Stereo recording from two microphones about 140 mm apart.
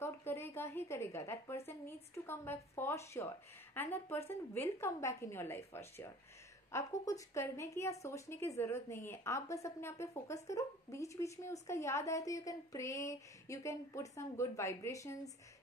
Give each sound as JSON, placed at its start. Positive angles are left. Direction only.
{"t": 0.0, "sound": "a woman's voice", "side_deg": 20}